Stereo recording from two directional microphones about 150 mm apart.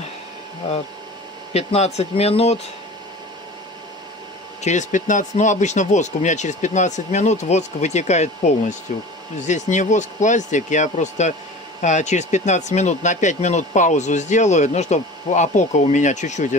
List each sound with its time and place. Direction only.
1.5 s speech: 45° left (ahead or behind)
4.6 s speech: 55° left (ahead or behind)